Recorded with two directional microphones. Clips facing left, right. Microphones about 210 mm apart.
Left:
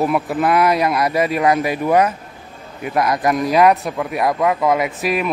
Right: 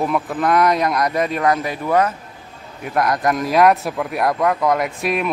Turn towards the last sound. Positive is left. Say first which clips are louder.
# left 1 dB
turn(degrees=0)  # may be behind; listen again after turning